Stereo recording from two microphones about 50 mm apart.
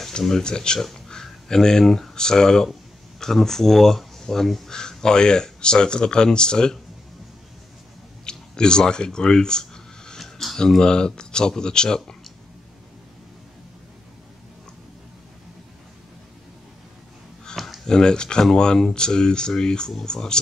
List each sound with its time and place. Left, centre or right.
0.3 s speech: centre
8.3 s speech: centre
17.8 s speech: centre